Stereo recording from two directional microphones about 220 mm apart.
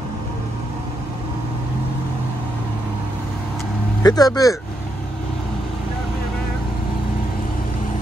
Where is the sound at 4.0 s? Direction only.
15° left (ahead or behind).